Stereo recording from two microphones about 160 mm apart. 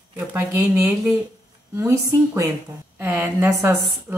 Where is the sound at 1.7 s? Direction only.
20° right (ahead or behind).